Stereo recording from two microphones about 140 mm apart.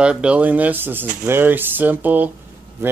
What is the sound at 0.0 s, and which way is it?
Speech, 5° right (ahead or behind).